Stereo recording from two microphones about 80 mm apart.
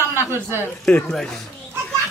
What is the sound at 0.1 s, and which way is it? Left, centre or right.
Speech, right.